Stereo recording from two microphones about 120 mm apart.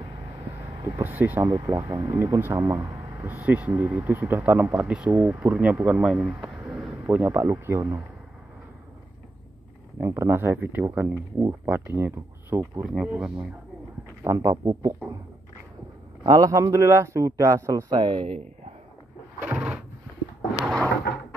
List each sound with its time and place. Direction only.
1.0 s speech: 15° right (ahead or behind)
1.5 s speech: 25° right (ahead or behind)
9.9 s speech: 25° right (ahead or behind)
12.8 s speech: 5° right (ahead or behind)
14.2 s speech: 25° right (ahead or behind)
16.3 s speech: 30° right (ahead or behind)
19.4 s a sound: 5° right (ahead or behind)